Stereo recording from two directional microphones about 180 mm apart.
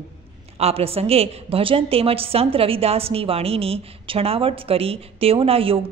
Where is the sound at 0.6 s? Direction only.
35° right (ahead or behind).